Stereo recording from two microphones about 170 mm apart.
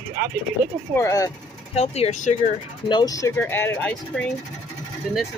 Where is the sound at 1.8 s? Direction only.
40° left (ahead or behind).